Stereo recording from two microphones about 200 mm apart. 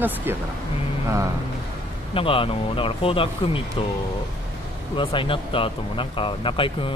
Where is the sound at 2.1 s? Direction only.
25° left (ahead or behind).